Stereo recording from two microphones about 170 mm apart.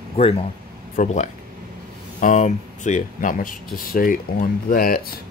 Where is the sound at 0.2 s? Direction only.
35° left (ahead or behind).